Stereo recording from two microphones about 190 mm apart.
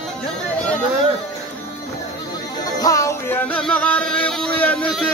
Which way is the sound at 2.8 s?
15° left (ahead or behind).